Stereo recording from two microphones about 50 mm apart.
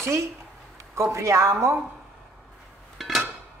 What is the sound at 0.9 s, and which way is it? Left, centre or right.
Speech, right.